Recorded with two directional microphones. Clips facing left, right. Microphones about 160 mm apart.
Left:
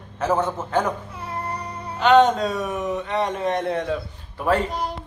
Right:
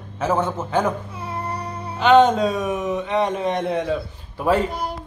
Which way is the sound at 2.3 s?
20° right (ahead or behind).